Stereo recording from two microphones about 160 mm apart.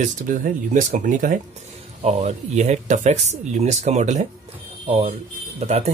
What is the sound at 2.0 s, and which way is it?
Speech, 45° right (ahead or behind).